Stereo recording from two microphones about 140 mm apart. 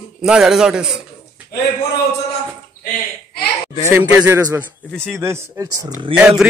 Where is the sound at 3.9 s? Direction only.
15° right (ahead or behind).